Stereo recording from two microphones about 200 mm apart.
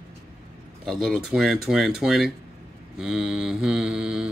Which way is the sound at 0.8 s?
Centre (ahead or behind).